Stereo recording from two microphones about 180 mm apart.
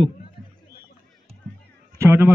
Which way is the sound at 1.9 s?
15° right (ahead or behind).